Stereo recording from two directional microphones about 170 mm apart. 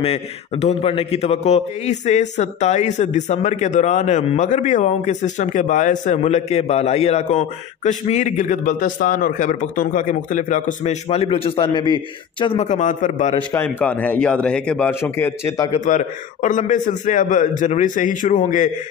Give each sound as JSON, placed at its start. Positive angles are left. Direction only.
{"t": 0.0, "sound": "a man's voice", "side_deg": 35}
{"t": 11.1, "sound": "a man's voice", "side_deg": 35}
{"t": 12.6, "sound": "a man's voice", "side_deg": 45}
{"t": 13.5, "sound": "a man's voice", "side_deg": 10}
{"t": 15.7, "sound": "a man's voice", "side_deg": 45}